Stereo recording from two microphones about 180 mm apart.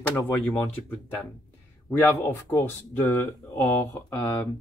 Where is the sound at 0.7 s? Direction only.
10° left (ahead or behind).